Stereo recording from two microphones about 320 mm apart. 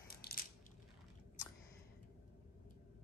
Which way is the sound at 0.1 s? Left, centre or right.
Left.